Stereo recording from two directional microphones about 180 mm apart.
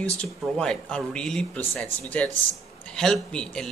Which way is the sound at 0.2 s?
5° left (ahead or behind).